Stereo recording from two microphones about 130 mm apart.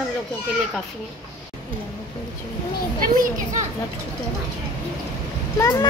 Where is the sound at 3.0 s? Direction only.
90° right.